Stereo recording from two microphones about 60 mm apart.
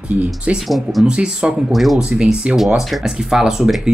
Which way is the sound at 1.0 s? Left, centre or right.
Centre.